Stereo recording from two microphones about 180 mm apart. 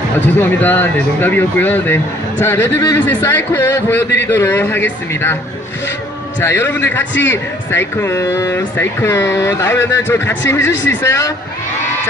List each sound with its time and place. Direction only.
0.4 s a man's voice: 10° left (ahead or behind)
6.4 s a man's voice: 10° left (ahead or behind)
10.7 s speech: 85° left
11.0 s a man's voice: 15° left (ahead or behind)